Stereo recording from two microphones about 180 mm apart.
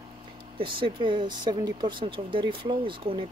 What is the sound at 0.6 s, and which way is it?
Speech, 30° right (ahead or behind).